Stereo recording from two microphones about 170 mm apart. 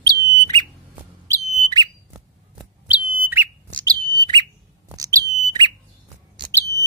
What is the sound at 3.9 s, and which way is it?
Bird, 25° right (ahead or behind).